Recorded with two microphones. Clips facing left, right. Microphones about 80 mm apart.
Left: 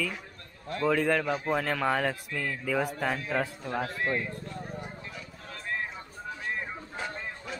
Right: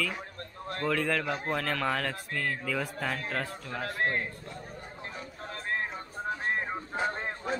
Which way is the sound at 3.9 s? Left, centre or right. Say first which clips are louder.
Even; right.